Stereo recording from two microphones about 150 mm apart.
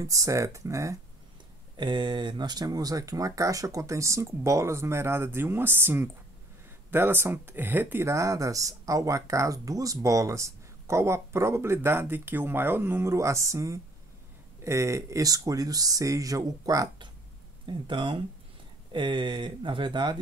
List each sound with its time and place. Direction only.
0.0 s speech: 20° right (ahead or behind)
1.8 s speech: 30° right (ahead or behind)